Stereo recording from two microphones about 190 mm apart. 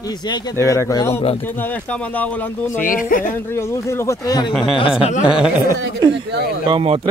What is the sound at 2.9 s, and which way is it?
Speech, 45° left (ahead or behind).